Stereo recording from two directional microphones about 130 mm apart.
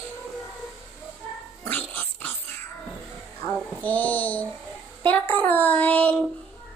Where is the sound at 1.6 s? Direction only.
15° left (ahead or behind).